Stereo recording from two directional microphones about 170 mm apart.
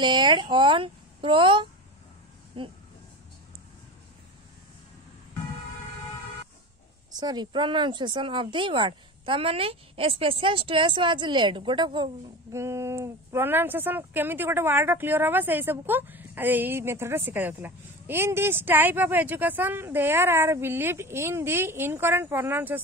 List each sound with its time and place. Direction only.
0.0 s a woman's voice: 25° right (ahead or behind)
7.2 s speech: 25° right (ahead or behind)
12.5 s speech: 15° right (ahead or behind)